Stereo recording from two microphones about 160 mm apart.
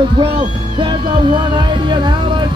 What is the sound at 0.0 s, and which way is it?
Music, 30° right (ahead or behind).